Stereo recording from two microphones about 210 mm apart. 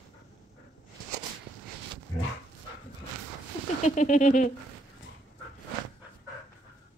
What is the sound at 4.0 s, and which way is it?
Speech, 35° left (ahead or behind).